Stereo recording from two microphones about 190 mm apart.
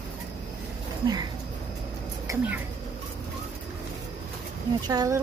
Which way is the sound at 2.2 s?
10° right (ahead or behind).